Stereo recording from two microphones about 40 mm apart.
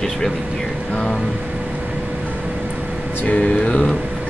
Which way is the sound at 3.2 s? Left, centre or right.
Left.